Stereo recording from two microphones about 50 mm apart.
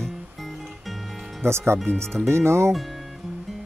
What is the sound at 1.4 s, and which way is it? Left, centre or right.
Speech, right.